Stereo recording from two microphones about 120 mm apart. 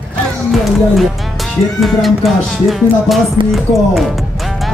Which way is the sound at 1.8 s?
Centre (ahead or behind).